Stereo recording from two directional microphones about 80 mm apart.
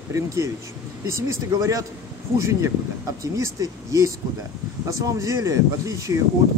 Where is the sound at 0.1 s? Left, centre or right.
Right.